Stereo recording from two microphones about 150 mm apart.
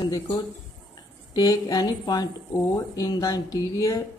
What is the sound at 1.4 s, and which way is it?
Speech, 25° left (ahead or behind).